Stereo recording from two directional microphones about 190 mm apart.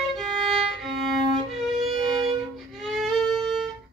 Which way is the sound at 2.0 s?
30° right (ahead or behind).